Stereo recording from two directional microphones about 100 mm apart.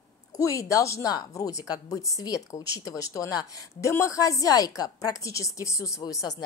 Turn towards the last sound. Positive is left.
turn(degrees=35)  # may be behind; listen again after turning